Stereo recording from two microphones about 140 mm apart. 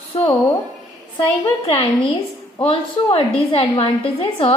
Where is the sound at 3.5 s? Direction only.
40° left (ahead or behind).